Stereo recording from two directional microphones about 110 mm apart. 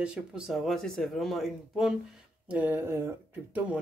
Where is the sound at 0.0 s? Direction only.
10° right (ahead or behind).